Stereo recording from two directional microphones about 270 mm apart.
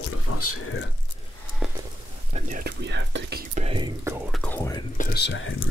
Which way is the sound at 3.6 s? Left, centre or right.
Right.